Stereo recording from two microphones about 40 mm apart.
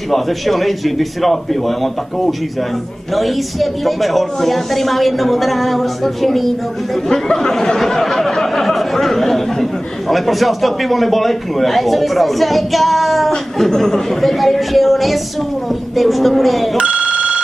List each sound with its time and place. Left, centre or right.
0.1 s speech: centre
13.6 s speech: centre
16.7 s telephone bell ringing: right